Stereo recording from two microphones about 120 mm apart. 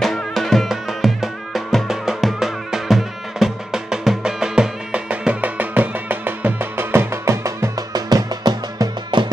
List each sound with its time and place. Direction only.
0.0 s music: centre (ahead or behind); by 9.3 s 35° right (ahead or behind)